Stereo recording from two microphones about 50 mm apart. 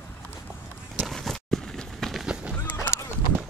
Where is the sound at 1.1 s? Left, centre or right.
Centre.